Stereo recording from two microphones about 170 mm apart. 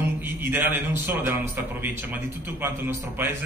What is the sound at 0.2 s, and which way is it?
A man's voice, 10° right (ahead or behind).